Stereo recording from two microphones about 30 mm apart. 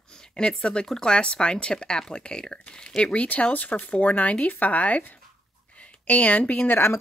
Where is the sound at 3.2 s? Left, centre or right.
Left.